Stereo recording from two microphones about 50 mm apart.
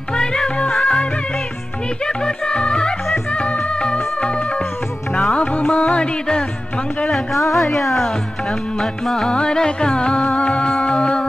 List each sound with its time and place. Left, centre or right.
0.1 s music: centre
2.0 s music: centre
7.5 s speech: centre
9.0 s music: centre